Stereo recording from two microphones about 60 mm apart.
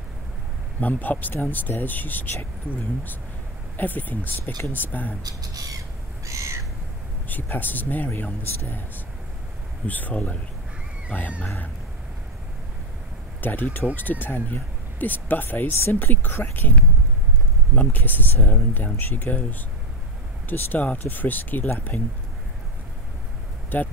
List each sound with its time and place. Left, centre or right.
0.7 s speech: left
3.7 s speech: left
5.2 s speech: right
6.2 s crow: right
7.2 s speech: left
13.4 s speech: left
20.4 s speech: left
23.7 s speech: left